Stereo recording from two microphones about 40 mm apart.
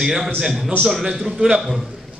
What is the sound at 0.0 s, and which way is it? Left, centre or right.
A man's voice, centre.